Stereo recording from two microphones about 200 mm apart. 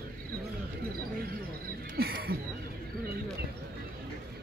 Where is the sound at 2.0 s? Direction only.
50° right (ahead or behind).